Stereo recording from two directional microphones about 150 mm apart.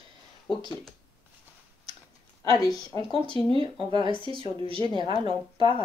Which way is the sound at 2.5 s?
25° left (ahead or behind).